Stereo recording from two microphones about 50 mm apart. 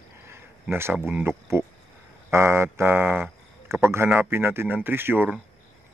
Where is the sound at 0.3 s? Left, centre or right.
Right.